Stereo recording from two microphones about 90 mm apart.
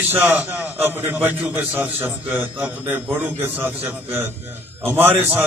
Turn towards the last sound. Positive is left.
turn(degrees=-20)  # may be behind; listen again after turning